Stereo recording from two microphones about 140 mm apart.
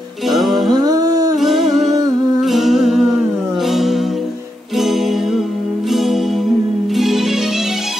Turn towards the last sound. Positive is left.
turn(degrees=0)  # may be behind; listen again after turning